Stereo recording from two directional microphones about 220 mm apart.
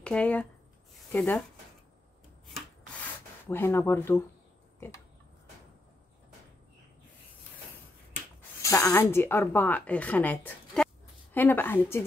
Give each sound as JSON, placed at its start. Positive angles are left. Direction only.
{"t": 0.0, "sound": "speech", "side_deg": 5}
{"t": 3.4, "sound": "speech", "side_deg": 10}
{"t": 4.7, "sound": "a sound", "side_deg": 10}
{"t": 8.4, "sound": "speech", "side_deg": 15}